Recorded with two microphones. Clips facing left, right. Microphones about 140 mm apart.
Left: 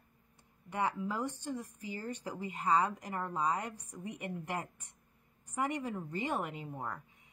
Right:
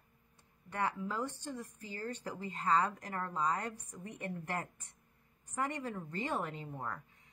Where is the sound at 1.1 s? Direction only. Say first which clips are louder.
Left 2 dB; 15° left (ahead or behind).